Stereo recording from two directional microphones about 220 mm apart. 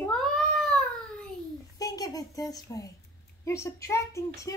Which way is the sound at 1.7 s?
15° left (ahead or behind).